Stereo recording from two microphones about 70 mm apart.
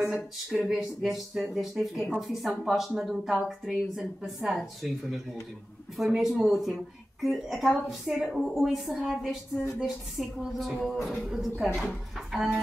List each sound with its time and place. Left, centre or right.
0.0 s speech: centre
12.3 s music: centre